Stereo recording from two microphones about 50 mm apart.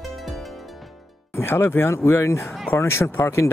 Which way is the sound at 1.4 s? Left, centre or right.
Left.